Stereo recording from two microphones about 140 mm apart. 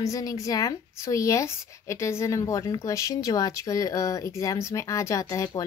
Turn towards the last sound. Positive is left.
turn(degrees=25)  # may be behind; listen again after turning